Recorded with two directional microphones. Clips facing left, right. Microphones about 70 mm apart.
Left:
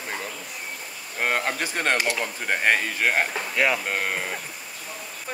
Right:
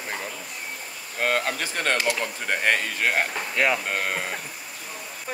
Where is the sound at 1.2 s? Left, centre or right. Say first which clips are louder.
Even; left; by 4.4 s centre.